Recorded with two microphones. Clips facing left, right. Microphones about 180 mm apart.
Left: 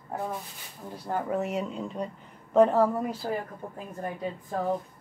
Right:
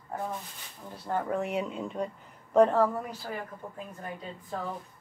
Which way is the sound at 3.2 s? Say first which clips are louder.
Left 7 dB; 30° left (ahead or behind).